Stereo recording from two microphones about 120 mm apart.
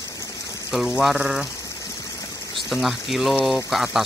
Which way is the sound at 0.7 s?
Centre (ahead or behind).